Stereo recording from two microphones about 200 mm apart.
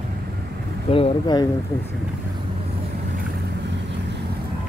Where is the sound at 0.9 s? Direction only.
25° left (ahead or behind).